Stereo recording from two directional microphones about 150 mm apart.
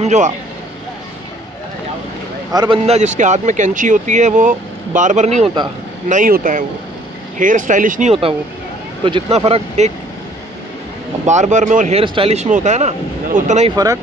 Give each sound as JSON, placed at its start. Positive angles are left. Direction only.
{"t": 0.0, "sound": "speech", "side_deg": -50}
{"t": 2.5, "sound": "speech", "side_deg": -30}
{"t": 2.9, "sound": "speech", "side_deg": -50}
{"t": 6.0, "sound": "speech", "side_deg": -60}
{"t": 8.1, "sound": "speech", "side_deg": -40}
{"t": 11.2, "sound": "speech", "side_deg": -50}
{"t": 12.0, "sound": "speech", "side_deg": -40}